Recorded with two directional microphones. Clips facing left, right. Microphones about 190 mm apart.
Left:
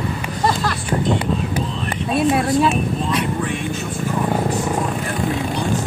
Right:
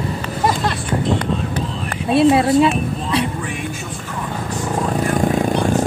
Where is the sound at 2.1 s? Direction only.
25° right (ahead or behind).